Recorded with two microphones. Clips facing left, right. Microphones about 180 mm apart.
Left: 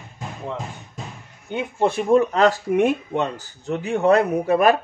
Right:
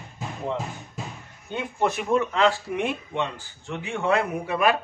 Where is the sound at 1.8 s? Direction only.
35° left (ahead or behind).